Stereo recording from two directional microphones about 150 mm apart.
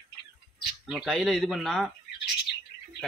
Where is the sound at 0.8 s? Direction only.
5° right (ahead or behind).